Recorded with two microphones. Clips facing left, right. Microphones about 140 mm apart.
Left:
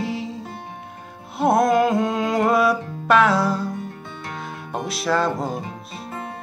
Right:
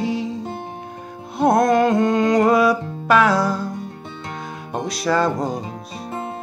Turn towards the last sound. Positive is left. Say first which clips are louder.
# right 2 dB
turn(degrees=5)  # may be behind; listen again after turning